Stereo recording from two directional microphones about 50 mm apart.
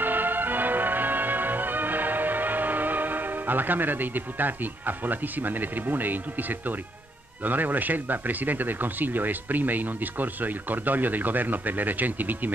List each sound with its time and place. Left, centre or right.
0.0 s music: right
7.4 s speech: right